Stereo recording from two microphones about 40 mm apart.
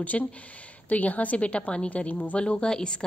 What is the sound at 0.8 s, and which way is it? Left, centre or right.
A woman's voice, left.